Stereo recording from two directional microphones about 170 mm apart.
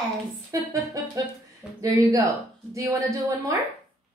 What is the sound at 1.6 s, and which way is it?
Speech, 5° right (ahead or behind).